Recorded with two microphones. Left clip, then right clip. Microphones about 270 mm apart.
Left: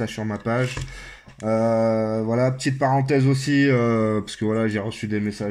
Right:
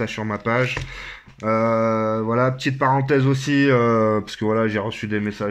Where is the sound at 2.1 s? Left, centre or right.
Right.